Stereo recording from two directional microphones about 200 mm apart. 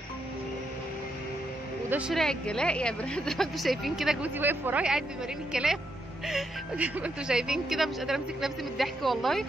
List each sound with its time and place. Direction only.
1.9 s a woman's voice: 5° right (ahead or behind)